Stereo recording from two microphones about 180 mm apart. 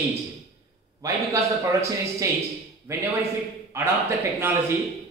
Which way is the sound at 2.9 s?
15° right (ahead or behind).